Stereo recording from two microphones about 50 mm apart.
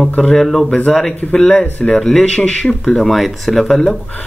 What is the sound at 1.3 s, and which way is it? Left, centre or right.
Speech, left.